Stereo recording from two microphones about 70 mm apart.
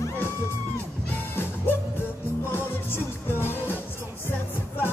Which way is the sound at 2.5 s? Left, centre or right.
Left.